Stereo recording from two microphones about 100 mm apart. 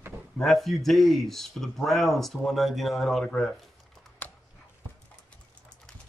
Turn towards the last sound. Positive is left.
turn(degrees=15)  # may be behind; listen again after turning